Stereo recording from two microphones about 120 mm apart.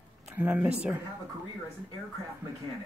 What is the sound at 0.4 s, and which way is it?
Speech, 15° right (ahead or behind).